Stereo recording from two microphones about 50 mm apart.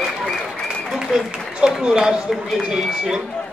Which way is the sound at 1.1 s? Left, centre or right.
Centre.